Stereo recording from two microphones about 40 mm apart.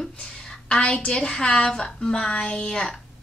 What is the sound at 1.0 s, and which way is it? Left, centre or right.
A woman's voice, left.